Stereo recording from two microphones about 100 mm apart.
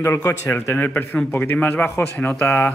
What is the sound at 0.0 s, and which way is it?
Speech, 30° left (ahead or behind).